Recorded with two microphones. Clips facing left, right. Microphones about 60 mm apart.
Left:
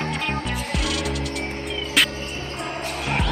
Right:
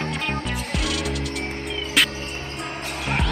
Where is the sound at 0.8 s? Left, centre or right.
Centre.